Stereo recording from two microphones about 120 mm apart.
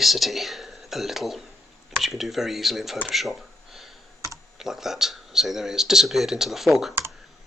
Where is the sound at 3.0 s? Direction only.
Centre (ahead or behind).